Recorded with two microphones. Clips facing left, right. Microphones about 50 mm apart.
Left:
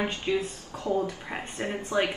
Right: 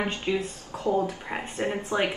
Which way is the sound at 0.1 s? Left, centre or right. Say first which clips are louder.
Even; right.